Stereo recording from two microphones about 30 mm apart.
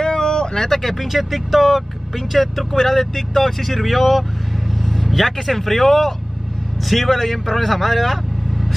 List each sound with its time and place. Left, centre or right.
0.0 s a sound: left
0.9 s speech: centre
2.7 s speech: centre